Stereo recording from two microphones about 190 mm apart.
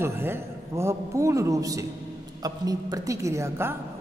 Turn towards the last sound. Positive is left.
turn(degrees=-15)  # may be behind; listen again after turning